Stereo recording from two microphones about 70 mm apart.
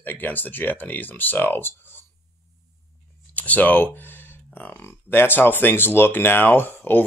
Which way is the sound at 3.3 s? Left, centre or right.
Left.